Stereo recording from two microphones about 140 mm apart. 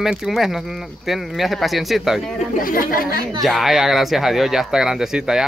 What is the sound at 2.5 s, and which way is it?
Speech, 90° left.